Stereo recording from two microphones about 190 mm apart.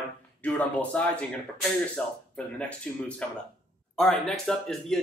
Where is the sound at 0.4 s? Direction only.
5° left (ahead or behind).